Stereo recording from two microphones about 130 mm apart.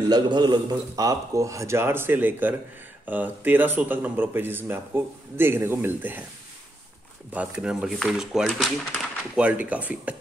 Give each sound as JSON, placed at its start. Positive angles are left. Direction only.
{"t": 0.1, "sound": "a man's voice", "side_deg": -30}
{"t": 7.3, "sound": "speech", "side_deg": -10}
{"t": 9.4, "sound": "speech", "side_deg": -10}